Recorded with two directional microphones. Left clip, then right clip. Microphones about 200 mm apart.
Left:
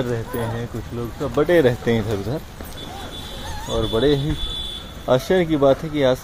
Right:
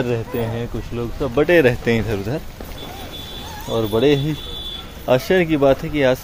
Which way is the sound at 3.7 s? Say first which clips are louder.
Right 2 dB; 15° right (ahead or behind).